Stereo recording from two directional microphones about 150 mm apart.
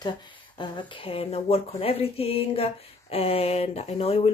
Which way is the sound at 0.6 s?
35° left (ahead or behind).